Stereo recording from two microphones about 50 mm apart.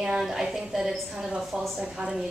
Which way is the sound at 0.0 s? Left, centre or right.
Centre.